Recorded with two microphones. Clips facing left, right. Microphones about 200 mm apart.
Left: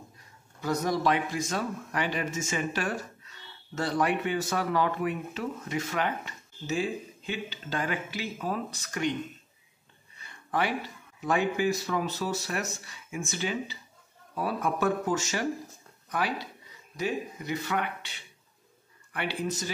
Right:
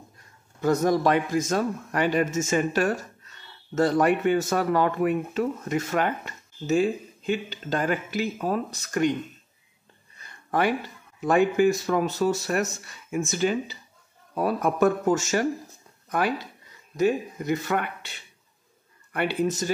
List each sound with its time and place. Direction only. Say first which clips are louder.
0.6 s speech: right 7 dB; 50° right (ahead or behind)
10.1 s a sound: right 4 dB; 45° right (ahead or behind)
11.1 s speech: right 7 dB; 50° right (ahead or behind)
19.4 s speech: right 7 dB; 45° right (ahead or behind)